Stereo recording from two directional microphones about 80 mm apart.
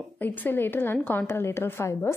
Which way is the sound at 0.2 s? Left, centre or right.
Left.